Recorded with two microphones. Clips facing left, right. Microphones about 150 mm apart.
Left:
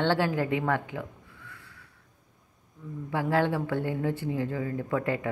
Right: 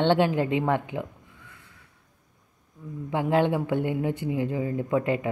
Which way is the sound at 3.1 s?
20° right (ahead or behind).